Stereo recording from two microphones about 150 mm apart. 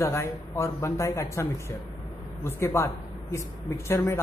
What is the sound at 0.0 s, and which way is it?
A woman's voice, 20° left (ahead or behind).